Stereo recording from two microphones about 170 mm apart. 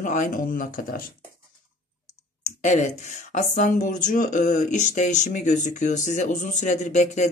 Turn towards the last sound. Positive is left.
turn(degrees=45)  # may be behind; listen again after turning